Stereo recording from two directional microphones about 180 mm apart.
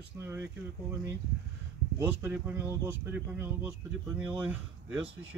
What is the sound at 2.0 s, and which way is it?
Speech, 10° right (ahead or behind).